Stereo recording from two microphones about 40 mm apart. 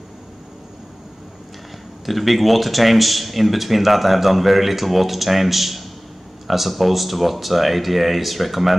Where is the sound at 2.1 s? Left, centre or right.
Centre.